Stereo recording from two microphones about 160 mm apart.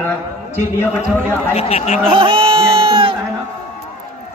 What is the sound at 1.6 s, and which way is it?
Speech, 40° left (ahead or behind).